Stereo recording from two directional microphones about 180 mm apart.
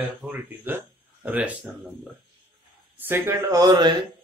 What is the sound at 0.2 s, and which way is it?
Speech, 10° right (ahead or behind).